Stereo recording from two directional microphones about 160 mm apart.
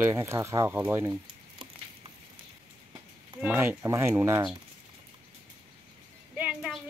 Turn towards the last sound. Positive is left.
turn(degrees=-5)  # may be behind; listen again after turning